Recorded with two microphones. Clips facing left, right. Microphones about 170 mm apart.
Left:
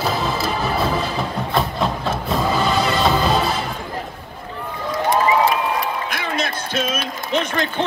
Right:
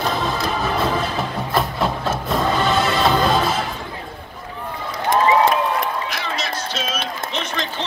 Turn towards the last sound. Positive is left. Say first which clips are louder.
# left 5 dB
turn(degrees=50)  # may be behind; listen again after turning